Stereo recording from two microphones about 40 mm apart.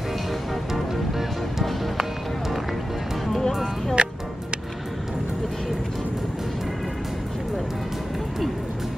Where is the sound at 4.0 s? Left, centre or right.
Right.